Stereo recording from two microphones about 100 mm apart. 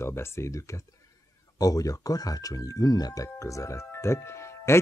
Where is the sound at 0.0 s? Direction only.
25° left (ahead or behind).